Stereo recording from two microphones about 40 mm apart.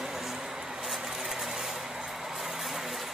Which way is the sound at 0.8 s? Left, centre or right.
Centre.